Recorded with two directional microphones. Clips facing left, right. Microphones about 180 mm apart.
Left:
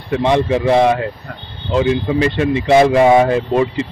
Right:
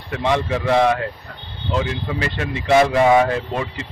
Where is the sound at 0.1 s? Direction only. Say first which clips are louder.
Left 6 dB; 20° left (ahead or behind).